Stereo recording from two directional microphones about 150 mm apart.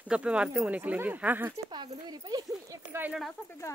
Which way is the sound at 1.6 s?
30° right (ahead or behind).